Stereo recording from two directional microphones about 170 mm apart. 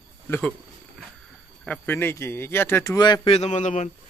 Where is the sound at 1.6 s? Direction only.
10° left (ahead or behind).